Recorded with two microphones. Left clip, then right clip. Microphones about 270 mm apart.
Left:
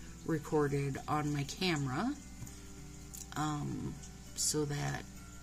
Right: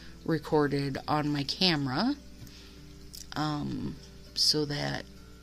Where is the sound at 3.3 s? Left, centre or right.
Right.